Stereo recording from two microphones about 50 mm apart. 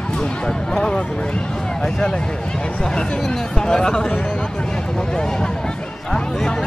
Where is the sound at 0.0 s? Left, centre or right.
Centre.